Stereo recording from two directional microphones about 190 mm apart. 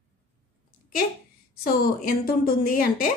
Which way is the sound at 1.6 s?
50° left (ahead or behind).